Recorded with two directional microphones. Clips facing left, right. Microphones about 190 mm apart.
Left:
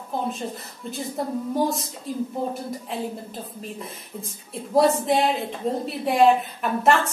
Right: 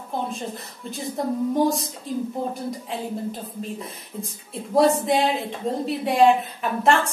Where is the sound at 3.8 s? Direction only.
Centre (ahead or behind).